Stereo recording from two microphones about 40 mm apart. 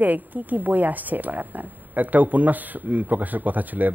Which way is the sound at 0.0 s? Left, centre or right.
Right.